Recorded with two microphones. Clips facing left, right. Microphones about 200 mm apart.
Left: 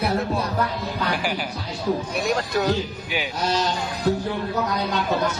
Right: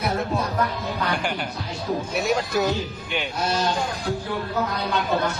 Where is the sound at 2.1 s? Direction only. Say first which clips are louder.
Even; 5° right (ahead or behind).